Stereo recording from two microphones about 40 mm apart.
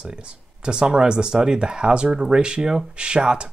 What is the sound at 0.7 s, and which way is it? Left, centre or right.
Speech, right.